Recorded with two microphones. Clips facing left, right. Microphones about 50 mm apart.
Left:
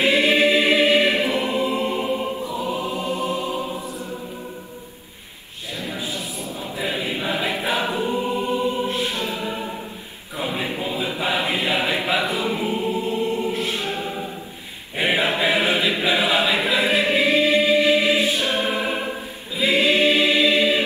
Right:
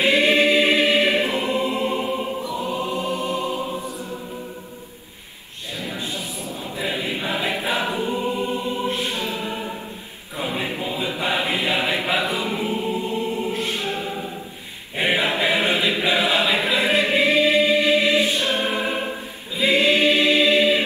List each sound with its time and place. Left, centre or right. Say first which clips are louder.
0.3 s choir: even; centre
1.1 s choir: even; right
1.5 s choir: even; centre
3.3 s music: even; centre
5.9 s a sound: left 1 dB; centre
6.6 s choir: even; centre
9.5 s a capella: even; centre
10.3 s choir: even; centre
12.1 s chant: even; centre
12.5 s music: left 1 dB; centre
15.0 s choir: even; centre
15.4 s chant: even; centre
16.4 s choir: even; centre